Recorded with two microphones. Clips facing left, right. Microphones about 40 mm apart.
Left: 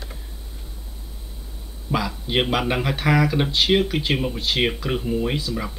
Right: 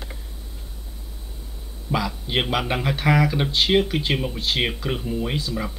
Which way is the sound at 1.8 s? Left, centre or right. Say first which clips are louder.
Left 1 dB; centre.